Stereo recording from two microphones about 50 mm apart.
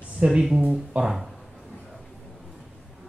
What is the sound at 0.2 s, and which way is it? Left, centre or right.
Speech, right.